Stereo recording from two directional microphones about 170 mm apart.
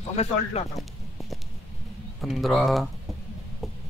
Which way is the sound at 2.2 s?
Centre (ahead or behind).